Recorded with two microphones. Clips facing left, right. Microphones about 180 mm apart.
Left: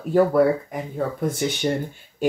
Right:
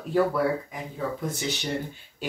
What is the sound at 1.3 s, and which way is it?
Speech, 55° left (ahead or behind).